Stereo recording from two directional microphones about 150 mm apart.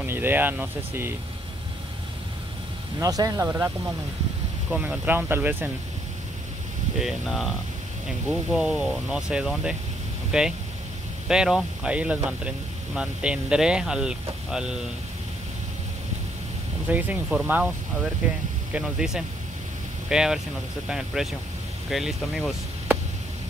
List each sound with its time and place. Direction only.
0.0 s speech: 15° right (ahead or behind)
3.0 s speech: 25° right (ahead or behind)
7.0 s speech: centre (ahead or behind)
16.9 s speech: 10° right (ahead or behind)